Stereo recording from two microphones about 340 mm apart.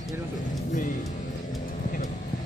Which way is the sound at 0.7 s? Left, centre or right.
Left.